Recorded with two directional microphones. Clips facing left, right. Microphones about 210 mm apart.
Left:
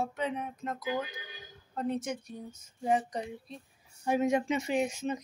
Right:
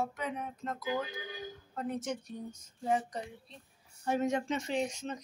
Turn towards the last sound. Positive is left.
turn(degrees=10)  # may be behind; listen again after turning